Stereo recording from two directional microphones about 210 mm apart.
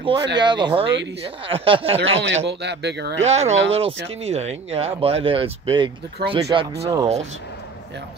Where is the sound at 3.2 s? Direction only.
30° right (ahead or behind).